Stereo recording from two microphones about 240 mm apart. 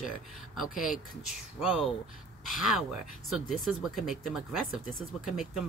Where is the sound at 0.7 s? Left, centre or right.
Left.